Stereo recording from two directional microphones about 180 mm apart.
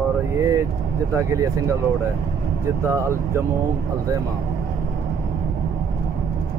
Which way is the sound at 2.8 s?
15° right (ahead or behind).